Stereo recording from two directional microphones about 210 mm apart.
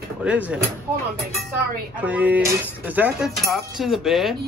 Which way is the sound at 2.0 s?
5° right (ahead or behind).